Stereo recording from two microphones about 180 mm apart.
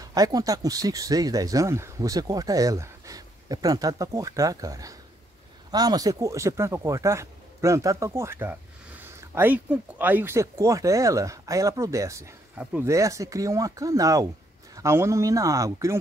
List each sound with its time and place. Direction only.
0.0 s speech: 20° right (ahead or behind)